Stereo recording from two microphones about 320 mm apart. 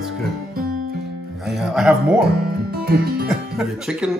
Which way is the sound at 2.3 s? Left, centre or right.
Right.